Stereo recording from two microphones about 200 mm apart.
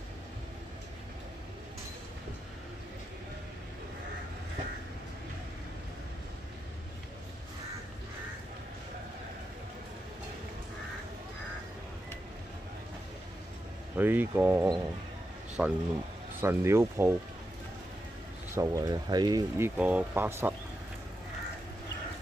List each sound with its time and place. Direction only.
13.9 s speech: 10° right (ahead or behind)
18.5 s speech: 15° right (ahead or behind)